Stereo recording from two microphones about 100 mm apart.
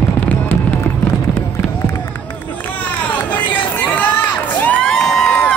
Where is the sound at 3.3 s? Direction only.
20° left (ahead or behind).